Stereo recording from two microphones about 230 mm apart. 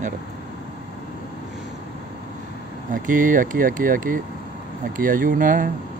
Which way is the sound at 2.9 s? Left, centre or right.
Right.